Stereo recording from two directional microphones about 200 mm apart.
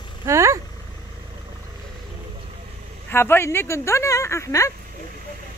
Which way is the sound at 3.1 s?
10° left (ahead or behind).